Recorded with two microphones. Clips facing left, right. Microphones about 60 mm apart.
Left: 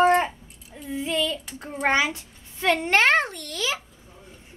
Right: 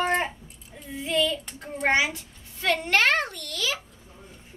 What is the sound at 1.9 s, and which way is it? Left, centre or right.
Speech, centre.